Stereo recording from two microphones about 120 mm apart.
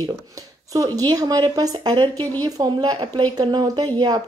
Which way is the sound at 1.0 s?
35° right (ahead or behind).